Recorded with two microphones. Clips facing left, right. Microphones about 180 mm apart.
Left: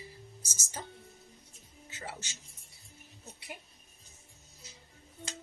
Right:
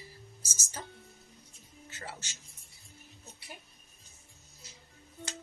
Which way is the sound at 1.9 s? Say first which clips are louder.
Left 2 dB; 20° left (ahead or behind).